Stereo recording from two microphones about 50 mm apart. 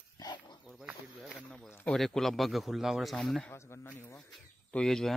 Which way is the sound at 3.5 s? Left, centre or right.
Left.